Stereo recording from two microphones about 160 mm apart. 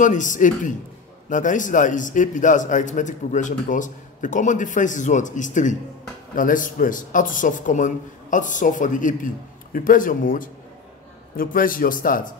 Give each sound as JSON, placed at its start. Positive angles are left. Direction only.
{"t": 0.0, "sound": "a man's voice", "side_deg": 55}